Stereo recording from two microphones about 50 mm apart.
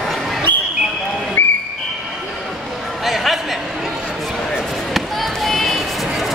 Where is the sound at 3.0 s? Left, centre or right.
Centre.